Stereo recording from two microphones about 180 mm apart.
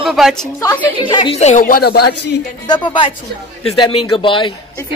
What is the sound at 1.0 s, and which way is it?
Speech, 30° left (ahead or behind).